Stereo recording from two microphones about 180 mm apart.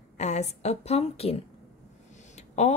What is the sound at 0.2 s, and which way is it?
A woman's voice, 40° left (ahead or behind).